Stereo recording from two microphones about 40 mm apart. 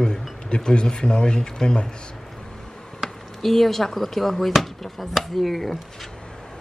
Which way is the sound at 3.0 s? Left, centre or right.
Centre.